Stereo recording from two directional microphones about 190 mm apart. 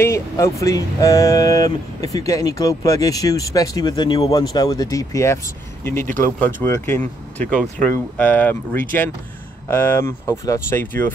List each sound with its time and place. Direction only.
0.0 s speech: 15° left (ahead or behind)